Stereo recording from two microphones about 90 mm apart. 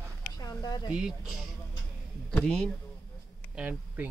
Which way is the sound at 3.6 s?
10° right (ahead or behind).